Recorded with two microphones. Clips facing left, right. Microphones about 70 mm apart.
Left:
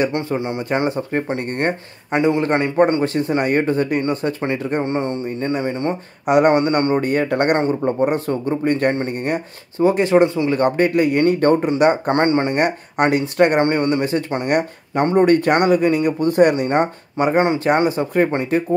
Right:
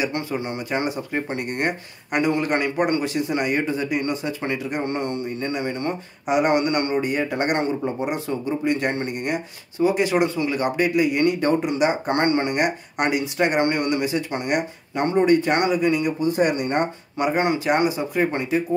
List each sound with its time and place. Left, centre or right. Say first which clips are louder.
0.1 s speech: left 5 dB; left
4.4 s speech: left 5 dB; left
6.2 s speech: left 6 dB; left
6.5 s speech: left 4 dB; left
7.1 s speech: left 6 dB; left
10.5 s speech: left 5 dB; left
12.1 s speech: left 4 dB; left
15.1 s speech: left 4 dB; left
16.2 s speech: left 6 dB; left
16.6 s speech: left 5 dB; left